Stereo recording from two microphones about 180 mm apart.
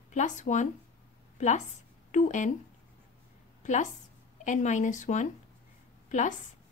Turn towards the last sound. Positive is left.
turn(degrees=45)  # may be behind; listen again after turning